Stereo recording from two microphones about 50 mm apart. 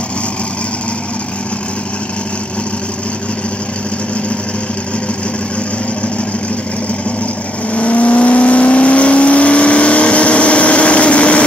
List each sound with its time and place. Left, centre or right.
7.7 s vehicle: left